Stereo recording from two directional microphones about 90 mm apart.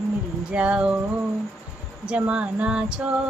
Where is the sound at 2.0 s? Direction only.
15° right (ahead or behind).